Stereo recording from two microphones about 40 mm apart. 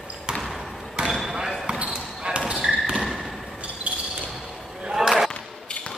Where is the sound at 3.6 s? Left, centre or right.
Right.